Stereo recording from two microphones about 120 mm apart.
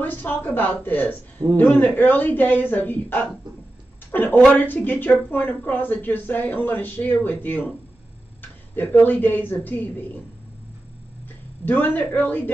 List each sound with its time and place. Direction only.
0.0 s speech: 15° left (ahead or behind)
11.6 s speech: 15° left (ahead or behind)